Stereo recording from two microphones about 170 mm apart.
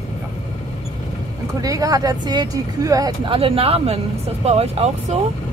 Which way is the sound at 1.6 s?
20° right (ahead or behind).